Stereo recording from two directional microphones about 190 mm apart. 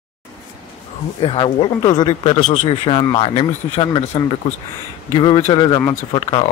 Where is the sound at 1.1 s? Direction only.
25° left (ahead or behind).